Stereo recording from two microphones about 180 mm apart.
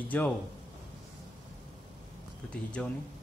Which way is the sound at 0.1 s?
10° left (ahead or behind).